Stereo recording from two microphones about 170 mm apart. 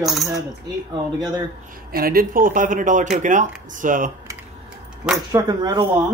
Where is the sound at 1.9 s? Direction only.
60° right (ahead or behind).